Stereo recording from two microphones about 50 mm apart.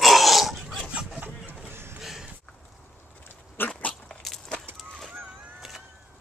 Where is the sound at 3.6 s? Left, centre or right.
Left.